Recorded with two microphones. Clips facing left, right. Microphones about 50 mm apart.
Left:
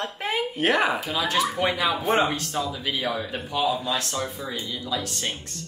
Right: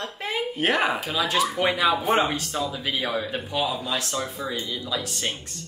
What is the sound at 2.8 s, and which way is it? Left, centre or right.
Speech, centre.